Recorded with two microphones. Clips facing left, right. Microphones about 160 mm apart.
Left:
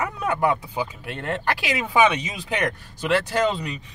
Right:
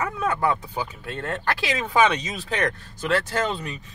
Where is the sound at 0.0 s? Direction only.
15° left (ahead or behind).